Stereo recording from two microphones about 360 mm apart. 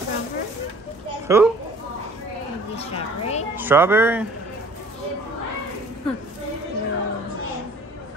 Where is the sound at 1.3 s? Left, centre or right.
Centre.